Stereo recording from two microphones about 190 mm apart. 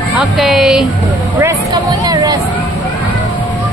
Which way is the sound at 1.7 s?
20° right (ahead or behind).